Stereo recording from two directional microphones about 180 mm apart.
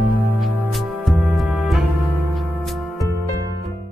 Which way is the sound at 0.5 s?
5° right (ahead or behind).